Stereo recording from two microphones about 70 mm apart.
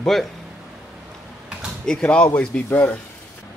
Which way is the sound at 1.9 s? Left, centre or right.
Centre.